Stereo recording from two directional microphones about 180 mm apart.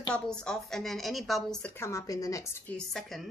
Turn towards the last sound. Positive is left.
turn(degrees=0)  # may be behind; listen again after turning